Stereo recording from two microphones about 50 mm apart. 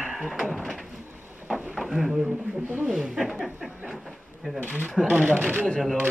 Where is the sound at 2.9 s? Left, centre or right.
Centre.